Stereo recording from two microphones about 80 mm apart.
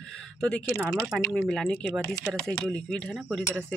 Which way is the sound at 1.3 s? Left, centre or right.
Centre.